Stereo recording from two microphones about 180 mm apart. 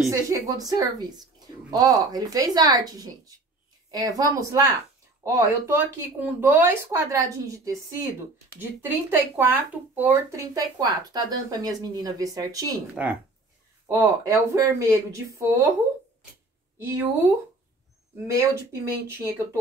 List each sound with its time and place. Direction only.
0.1 s speech: 20° right (ahead or behind)
12.9 s speech: 10° right (ahead or behind)
16.7 s speech: 15° right (ahead or behind)
18.2 s speech: 15° right (ahead or behind)